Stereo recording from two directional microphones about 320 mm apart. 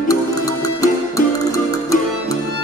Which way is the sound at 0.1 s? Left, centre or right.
Centre.